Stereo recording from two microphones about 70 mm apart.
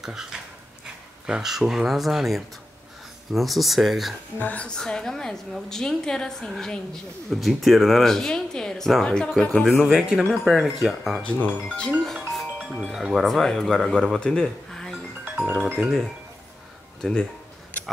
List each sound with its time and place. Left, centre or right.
0.0 s dog: centre
1.2 s speech: centre
4.4 s speech: centre
4.7 s a woman's voice: centre
9.7 s speech: centre
11.2 s speech: left
12.0 s music: centre
12.9 s speech: centre
14.2 s a sound: centre
15.3 s music: right
15.6 s speech: centre
17.0 s a woman's voice: centre